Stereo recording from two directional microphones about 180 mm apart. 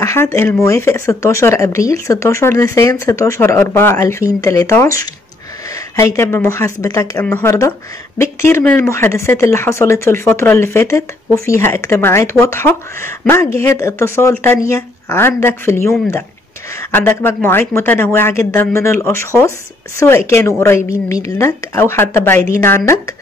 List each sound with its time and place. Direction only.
0.0 s speech: 15° left (ahead or behind)
5.9 s speech: 15° left (ahead or behind)
16.9 s speech: 10° left (ahead or behind)